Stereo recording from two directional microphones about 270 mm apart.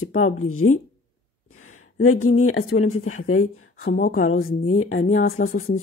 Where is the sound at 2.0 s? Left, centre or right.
Left.